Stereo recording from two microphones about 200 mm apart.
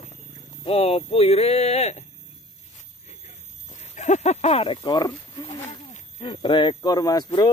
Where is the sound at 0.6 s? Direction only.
30° left (ahead or behind).